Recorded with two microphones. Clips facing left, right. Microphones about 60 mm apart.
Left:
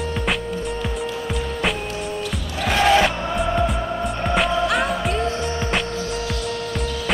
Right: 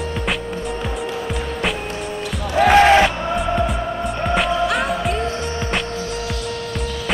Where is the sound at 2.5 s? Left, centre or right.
Right.